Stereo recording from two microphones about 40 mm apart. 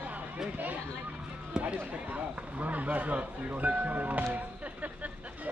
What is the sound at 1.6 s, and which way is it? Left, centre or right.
A man's voice, right.